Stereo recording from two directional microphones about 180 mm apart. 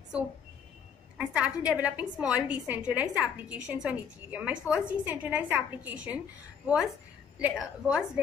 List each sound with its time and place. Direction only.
1.1 s a woman's voice: 5° right (ahead or behind)
7.3 s a woman's voice: 5° right (ahead or behind)